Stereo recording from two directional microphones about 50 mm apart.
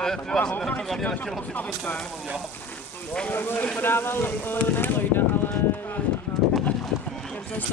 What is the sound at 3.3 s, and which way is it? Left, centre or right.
Speech, left.